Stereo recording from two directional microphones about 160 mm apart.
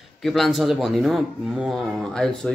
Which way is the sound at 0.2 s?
Centre (ahead or behind).